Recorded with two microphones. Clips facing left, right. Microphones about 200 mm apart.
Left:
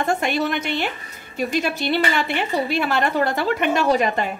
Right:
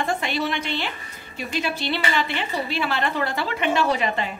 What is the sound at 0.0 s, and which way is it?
A woman's voice, 45° left (ahead or behind).